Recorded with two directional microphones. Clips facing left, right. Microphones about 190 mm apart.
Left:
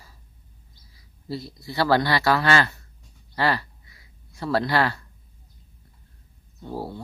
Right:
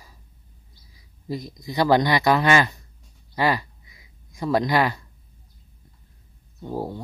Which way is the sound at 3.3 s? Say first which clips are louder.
Right 2 dB; 15° right (ahead or behind).